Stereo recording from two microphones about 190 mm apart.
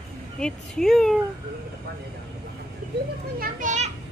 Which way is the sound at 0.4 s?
5° left (ahead or behind).